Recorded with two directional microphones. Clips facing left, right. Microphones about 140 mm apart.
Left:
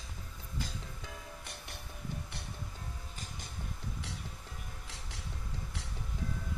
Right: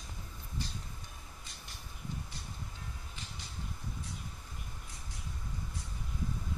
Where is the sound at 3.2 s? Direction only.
50° left (ahead or behind).